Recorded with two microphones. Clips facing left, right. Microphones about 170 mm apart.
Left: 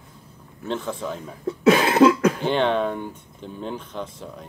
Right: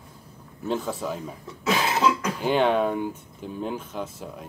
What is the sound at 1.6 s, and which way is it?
Cough, 60° left (ahead or behind).